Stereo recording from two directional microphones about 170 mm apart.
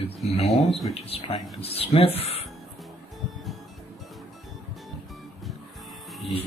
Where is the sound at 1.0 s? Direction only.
35° left (ahead or behind).